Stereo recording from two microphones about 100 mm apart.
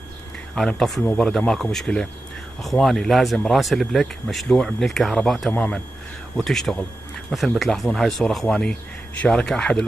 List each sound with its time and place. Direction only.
0.6 s speech: 5° left (ahead or behind)
5.5 s speech: 10° left (ahead or behind)